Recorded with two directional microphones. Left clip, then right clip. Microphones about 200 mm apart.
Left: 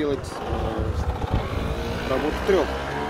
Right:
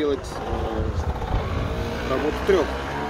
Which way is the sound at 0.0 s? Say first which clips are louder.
Right 2 dB; centre (ahead or behind).